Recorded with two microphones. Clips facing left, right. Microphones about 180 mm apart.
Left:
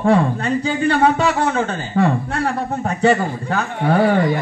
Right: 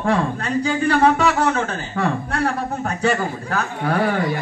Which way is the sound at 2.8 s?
30° left (ahead or behind).